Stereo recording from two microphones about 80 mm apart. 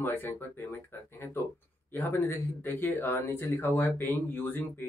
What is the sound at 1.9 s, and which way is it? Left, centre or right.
Speech, left.